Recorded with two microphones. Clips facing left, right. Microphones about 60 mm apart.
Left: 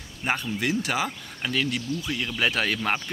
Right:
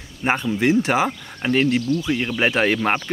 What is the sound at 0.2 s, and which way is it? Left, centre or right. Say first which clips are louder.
Speech: right 7 dB; right.